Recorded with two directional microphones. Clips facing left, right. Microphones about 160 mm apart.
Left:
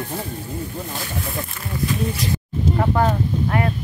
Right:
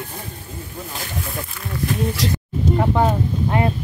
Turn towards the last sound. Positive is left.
turn(degrees=-20)  # may be behind; listen again after turning